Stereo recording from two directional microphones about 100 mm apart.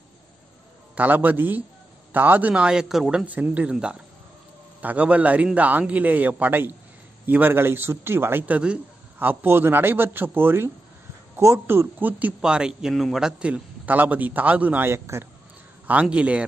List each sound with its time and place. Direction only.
0.9 s a man's voice: 15° right (ahead or behind)
3.3 s a man's voice: 15° right (ahead or behind)
14.9 s a man's voice: 25° right (ahead or behind)
15.9 s a man's voice: 15° right (ahead or behind)